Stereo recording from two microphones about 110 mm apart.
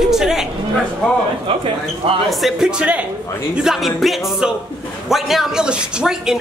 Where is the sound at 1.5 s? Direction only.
55° right (ahead or behind).